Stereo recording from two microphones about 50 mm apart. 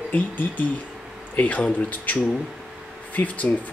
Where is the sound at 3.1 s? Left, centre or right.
Left.